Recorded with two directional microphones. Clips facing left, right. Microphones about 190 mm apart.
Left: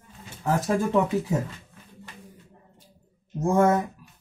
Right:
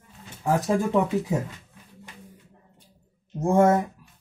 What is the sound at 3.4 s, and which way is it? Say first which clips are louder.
Speech: right 1 dB; 25° right (ahead or behind).